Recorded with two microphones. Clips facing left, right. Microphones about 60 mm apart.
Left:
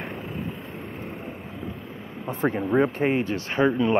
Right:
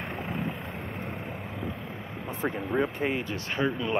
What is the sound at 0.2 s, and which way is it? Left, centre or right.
Vehicle, right.